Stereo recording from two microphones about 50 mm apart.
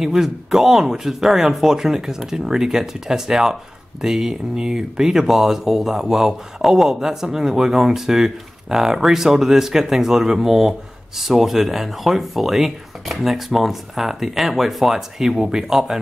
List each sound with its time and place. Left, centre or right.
0.0 s speech: centre